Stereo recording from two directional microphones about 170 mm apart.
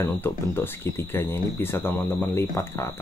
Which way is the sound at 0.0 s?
15° left (ahead or behind).